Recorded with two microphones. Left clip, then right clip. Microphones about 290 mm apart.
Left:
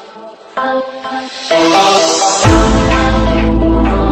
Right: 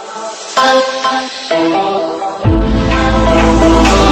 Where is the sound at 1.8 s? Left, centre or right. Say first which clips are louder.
Left 5 dB; left.